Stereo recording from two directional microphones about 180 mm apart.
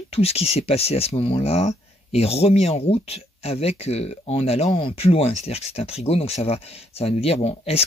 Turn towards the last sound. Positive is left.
turn(degrees=35)  # may be behind; listen again after turning